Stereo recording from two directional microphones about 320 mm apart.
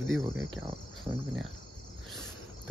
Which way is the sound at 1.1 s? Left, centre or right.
Centre.